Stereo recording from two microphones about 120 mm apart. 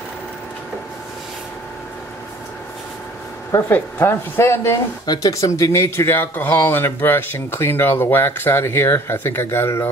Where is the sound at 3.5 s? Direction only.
20° left (ahead or behind).